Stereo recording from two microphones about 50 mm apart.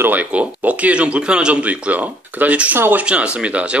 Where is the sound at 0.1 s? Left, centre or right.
Right.